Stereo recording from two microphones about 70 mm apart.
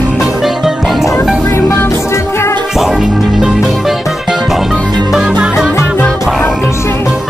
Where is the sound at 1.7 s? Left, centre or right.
Left.